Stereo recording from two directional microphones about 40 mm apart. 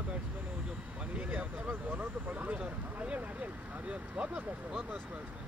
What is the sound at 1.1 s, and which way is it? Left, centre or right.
Speech, right.